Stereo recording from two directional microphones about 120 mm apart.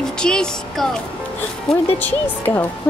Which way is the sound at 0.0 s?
5° left (ahead or behind).